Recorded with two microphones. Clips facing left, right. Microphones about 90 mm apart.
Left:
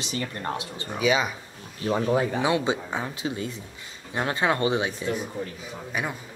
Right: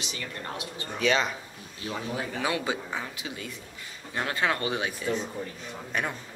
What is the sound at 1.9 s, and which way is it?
Speech, 50° left (ahead or behind).